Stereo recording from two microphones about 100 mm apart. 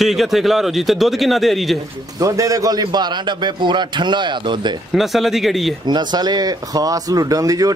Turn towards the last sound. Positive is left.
turn(degrees=-35)  # may be behind; listen again after turning